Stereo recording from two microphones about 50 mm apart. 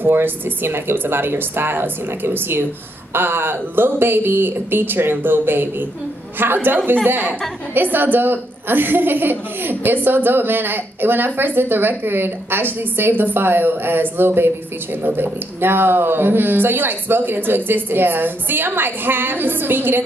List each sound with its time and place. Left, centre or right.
0.0 s speech: right